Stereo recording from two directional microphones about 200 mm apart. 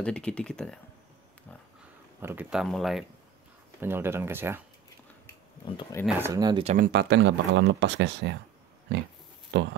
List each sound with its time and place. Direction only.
0.0 s speech: 5° left (ahead or behind)
2.2 s speech: 5° right (ahead or behind)
3.8 s speech: 10° right (ahead or behind)
5.7 s speech: 25° left (ahead or behind)
6.0 s speech: 10° right (ahead or behind)
6.6 s speech: 35° right (ahead or behind)
6.9 s speech: 60° right (ahead or behind)
9.5 s speech: 65° right (ahead or behind)